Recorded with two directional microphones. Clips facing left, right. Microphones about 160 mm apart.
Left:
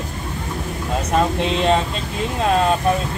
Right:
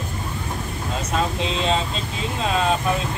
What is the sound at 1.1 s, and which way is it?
Speech, 60° left (ahead or behind).